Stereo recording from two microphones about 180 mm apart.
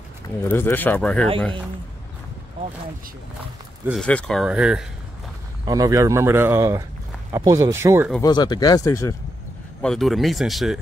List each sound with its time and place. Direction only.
0.4 s speech: 10° left (ahead or behind)
4.0 s speech: 5° left (ahead or behind)
5.7 s speech: 20° right (ahead or behind)
8.2 s speech: 20° left (ahead or behind)
9.8 s speech: centre (ahead or behind)